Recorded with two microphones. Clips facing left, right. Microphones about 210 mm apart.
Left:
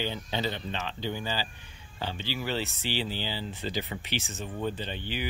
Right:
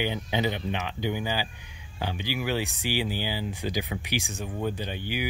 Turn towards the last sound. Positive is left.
turn(degrees=-10)  # may be behind; listen again after turning